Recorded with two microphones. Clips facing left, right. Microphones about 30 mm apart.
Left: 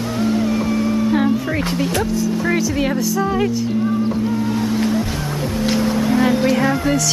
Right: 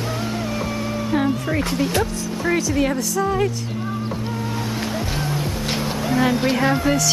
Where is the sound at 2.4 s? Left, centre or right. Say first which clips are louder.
Right 3 dB; centre.